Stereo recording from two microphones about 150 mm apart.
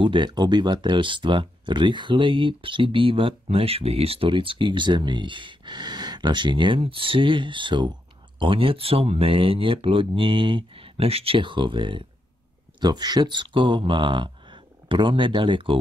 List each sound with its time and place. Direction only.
0.0 s speech: 30° right (ahead or behind)